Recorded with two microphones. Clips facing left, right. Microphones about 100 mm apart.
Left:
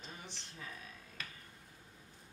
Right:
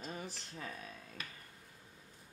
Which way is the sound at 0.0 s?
40° right (ahead or behind).